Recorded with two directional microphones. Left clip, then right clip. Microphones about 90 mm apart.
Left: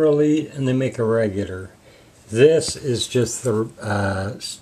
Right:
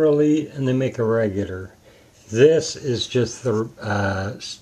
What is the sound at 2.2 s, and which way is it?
Speech, centre (ahead or behind).